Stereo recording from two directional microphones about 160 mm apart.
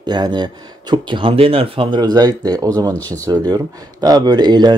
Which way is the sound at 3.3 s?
25° right (ahead or behind).